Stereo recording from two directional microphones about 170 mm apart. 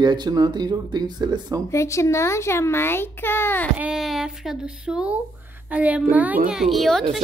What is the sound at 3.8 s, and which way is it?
Speech, 5° right (ahead or behind).